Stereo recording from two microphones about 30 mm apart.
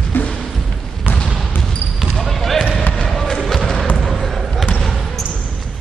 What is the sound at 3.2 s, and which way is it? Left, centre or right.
Basketball bounce, centre.